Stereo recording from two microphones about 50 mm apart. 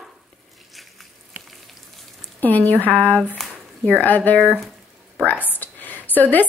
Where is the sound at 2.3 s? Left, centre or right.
Left.